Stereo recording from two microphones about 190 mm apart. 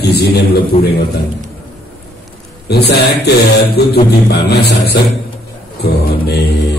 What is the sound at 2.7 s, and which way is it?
A man's voice, 60° left (ahead or behind).